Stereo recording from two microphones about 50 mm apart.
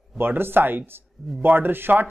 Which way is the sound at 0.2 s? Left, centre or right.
Right.